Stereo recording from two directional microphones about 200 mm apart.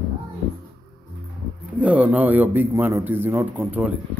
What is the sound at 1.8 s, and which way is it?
A man's voice, 5° right (ahead or behind).